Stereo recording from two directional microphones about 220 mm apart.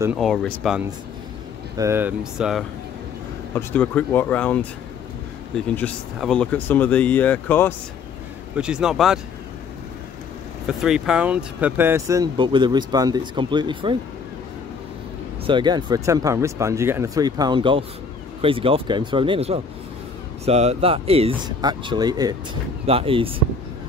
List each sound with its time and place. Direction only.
0.0 s speech: centre (ahead or behind)
1.8 s speech: 10° right (ahead or behind)
3.5 s speech: 5° left (ahead or behind)
5.8 s speech: 5° left (ahead or behind)
8.5 s speech: 5° right (ahead or behind)
10.7 s speech: centre (ahead or behind); by 13.9 s 20° right (ahead or behind)
15.4 s speech: 20° right (ahead or behind)